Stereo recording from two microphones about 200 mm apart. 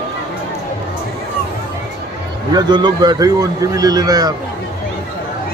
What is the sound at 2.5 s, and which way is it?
A man's voice, 20° right (ahead or behind).